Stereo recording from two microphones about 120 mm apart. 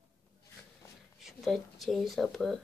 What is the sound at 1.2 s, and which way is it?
Speech, centre (ahead or behind).